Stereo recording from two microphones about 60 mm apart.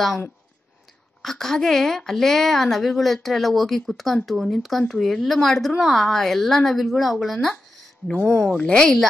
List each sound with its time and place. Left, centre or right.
1.2 s a woman's voice: centre
8.1 s speech: centre